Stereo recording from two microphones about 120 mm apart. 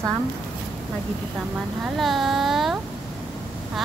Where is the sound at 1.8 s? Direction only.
Centre (ahead or behind).